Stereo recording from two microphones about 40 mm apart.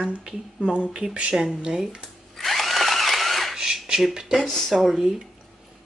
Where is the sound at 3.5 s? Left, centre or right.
Centre.